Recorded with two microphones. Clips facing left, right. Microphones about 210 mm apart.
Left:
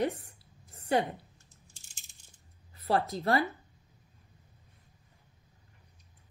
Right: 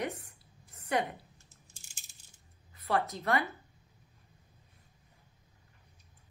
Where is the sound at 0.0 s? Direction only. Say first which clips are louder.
Left 6 dB; 30° left (ahead or behind).